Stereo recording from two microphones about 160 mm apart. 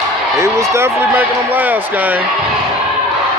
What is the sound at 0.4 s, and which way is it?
Speech, 15° right (ahead or behind).